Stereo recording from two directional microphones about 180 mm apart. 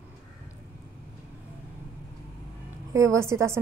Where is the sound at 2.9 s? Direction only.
15° right (ahead or behind).